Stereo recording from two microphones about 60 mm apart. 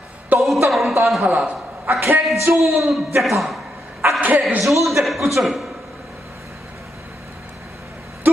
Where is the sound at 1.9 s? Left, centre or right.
Right.